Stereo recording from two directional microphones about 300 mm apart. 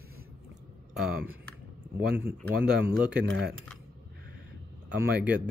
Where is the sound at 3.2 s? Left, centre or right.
Right.